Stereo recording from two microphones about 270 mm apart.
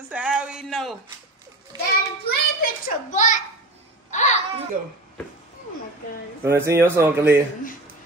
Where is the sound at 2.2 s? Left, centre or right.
Left.